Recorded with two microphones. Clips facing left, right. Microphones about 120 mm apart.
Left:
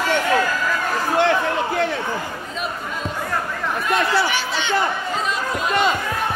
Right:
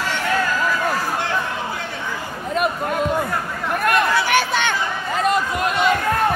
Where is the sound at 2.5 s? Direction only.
60° right (ahead or behind).